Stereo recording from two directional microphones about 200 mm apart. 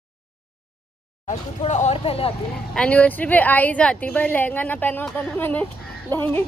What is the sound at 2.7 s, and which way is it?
A woman's voice, 5° left (ahead or behind).